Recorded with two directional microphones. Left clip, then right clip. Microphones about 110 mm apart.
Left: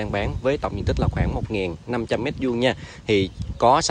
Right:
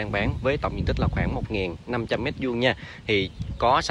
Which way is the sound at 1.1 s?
30° left (ahead or behind).